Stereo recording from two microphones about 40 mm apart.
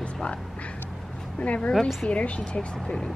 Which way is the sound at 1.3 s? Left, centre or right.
Left.